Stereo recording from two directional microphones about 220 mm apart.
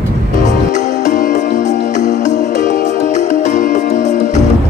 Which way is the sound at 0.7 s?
35° left (ahead or behind).